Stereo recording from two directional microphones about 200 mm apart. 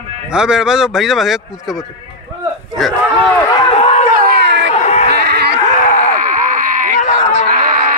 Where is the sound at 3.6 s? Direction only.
30° left (ahead or behind).